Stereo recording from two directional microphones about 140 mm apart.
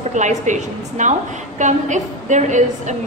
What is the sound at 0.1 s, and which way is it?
A woman's voice, 60° right (ahead or behind).